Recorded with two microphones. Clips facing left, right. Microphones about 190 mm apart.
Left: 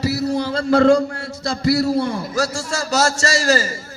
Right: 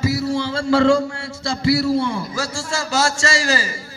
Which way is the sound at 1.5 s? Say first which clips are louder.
Even; 40° left (ahead or behind).